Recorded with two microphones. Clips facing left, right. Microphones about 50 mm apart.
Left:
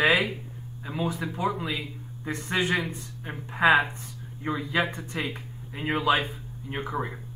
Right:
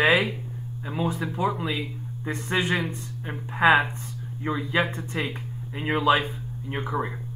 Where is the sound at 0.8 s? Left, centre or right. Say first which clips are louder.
Right 2 dB; centre.